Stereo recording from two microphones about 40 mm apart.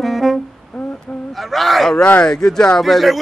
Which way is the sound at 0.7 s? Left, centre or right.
Centre.